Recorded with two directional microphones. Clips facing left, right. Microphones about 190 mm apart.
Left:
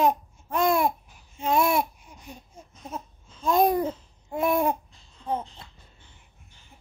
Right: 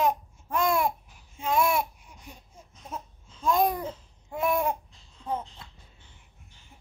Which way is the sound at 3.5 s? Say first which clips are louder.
Left 4 dB; 35° left (ahead or behind).